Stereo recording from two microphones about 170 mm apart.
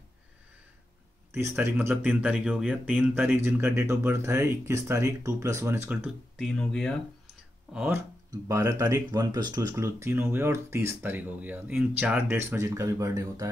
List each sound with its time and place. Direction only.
1.6 s speech: 15° right (ahead or behind)
6.3 s speech: centre (ahead or behind)
7.7 s speech: 10° right (ahead or behind)